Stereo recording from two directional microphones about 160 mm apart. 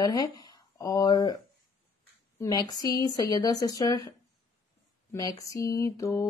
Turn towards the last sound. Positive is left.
turn(degrees=20)  # may be behind; listen again after turning